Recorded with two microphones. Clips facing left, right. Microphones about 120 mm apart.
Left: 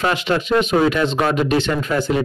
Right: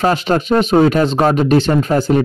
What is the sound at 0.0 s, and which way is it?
A man's voice, 40° right (ahead or behind).